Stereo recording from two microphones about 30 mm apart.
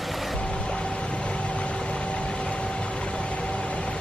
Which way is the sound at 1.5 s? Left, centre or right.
Left.